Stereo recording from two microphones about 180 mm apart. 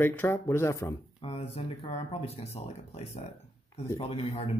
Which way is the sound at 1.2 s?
30° left (ahead or behind).